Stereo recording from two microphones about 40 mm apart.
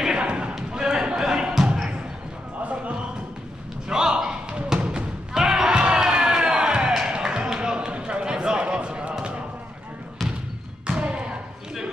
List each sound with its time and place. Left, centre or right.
0.2 s basketball bounce: right
3.9 s thump: centre
7.1 s a sound: centre
10.9 s thump: right